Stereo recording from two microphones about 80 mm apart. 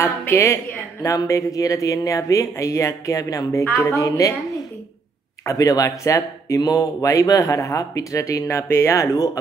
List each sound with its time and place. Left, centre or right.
0.0 s speech: left
5.4 s speech: left
8.5 s speech: left
9.0 s speech: left